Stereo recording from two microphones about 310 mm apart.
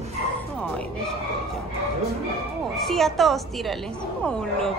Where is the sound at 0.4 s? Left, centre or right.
Centre.